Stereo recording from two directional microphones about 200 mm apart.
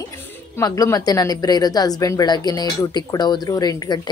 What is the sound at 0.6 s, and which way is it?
A woman's voice, 15° left (ahead or behind).